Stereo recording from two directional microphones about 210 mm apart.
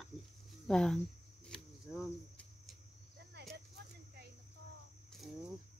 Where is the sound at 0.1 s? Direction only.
Centre (ahead or behind).